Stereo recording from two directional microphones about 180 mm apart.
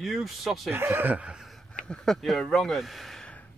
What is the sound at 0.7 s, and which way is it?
Speech, 10° right (ahead or behind).